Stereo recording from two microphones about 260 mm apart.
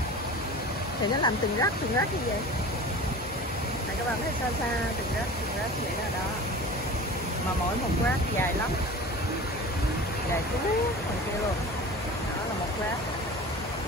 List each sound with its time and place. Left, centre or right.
1.2 s speech: centre